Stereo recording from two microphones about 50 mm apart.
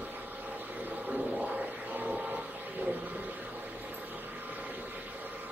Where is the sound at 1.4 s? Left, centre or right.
Right.